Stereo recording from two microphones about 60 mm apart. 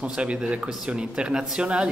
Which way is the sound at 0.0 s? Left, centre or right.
Centre.